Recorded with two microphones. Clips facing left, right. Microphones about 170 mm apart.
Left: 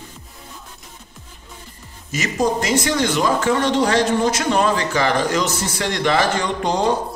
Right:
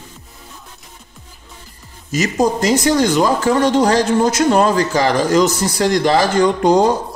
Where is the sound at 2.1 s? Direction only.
40° right (ahead or behind).